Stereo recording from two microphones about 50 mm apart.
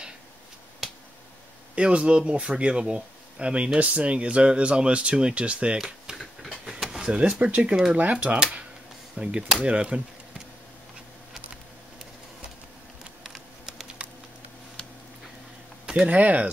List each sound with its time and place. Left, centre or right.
1.8 s speech: right
6.1 s a sound: centre
7.1 s speech: right
13.2 s typing: centre
16.1 s speech: right